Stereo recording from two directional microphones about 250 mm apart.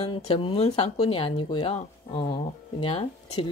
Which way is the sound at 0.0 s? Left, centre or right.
Left.